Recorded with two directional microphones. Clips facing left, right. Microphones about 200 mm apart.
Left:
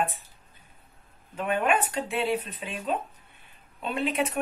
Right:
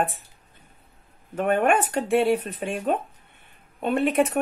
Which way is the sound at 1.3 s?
55° right (ahead or behind).